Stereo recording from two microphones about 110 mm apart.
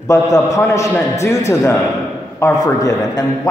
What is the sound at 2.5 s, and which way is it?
Speech, 35° left (ahead or behind).